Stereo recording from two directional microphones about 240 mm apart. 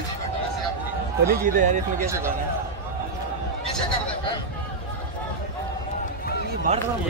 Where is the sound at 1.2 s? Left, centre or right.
Right.